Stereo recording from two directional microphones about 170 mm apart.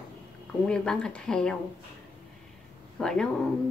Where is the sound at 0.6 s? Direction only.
5° left (ahead or behind).